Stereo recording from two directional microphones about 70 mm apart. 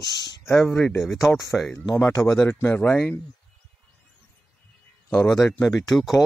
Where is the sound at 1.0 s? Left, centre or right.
Centre.